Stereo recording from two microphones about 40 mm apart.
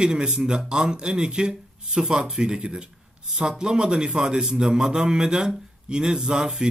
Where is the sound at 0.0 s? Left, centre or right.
Right.